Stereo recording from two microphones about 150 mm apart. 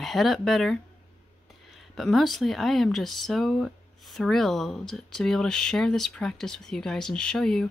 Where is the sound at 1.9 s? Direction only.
Centre (ahead or behind).